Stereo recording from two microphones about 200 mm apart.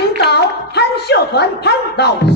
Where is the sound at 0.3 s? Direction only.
55° left (ahead or behind).